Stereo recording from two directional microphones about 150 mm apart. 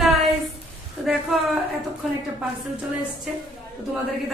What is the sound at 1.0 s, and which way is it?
Speech, centre (ahead or behind).